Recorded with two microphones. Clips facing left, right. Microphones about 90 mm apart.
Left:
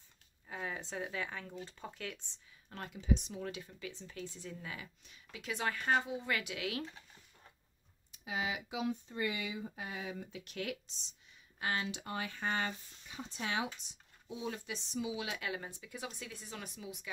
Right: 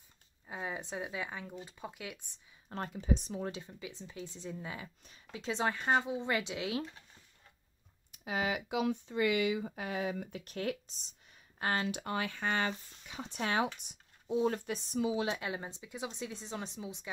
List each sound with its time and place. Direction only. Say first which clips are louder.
0.5 s speech: right 2 dB; 20° right (ahead or behind)
2.7 s speech: right 2 dB; 40° right (ahead or behind)
3.8 s speech: left 1 dB; 20° right (ahead or behind)
4.8 s speech: right 4 dB; 40° right (ahead or behind)
8.1 s speech: right 4 dB; 55° right (ahead or behind)
10.5 s speech: right 5 dB; 40° right (ahead or behind)